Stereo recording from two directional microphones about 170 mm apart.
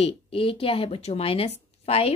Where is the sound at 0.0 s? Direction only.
30° left (ahead or behind).